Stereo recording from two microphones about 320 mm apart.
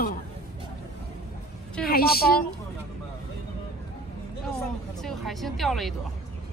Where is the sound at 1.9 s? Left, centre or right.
Left.